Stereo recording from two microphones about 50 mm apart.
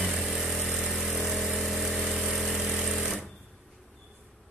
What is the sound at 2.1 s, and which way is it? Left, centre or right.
Sewing machine, centre.